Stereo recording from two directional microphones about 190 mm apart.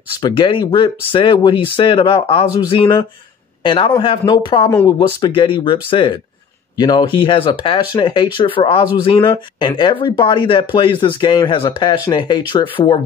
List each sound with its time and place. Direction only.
0.2 s speech: 25° left (ahead or behind)